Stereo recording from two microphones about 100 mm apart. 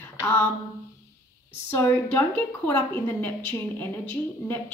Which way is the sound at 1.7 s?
20° left (ahead or behind).